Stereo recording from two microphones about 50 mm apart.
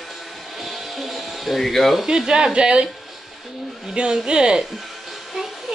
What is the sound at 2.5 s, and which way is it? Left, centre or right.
Speech, centre.